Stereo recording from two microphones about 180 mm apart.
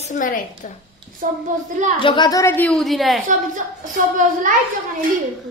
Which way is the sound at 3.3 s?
45° right (ahead or behind).